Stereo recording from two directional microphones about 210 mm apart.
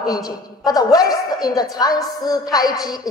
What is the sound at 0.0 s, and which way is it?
A woman's voice, 20° left (ahead or behind).